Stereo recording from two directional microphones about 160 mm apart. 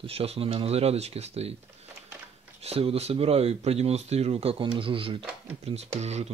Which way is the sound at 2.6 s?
40° right (ahead or behind).